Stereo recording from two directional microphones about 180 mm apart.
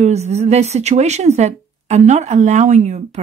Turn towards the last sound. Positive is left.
turn(degrees=-40)  # may be behind; listen again after turning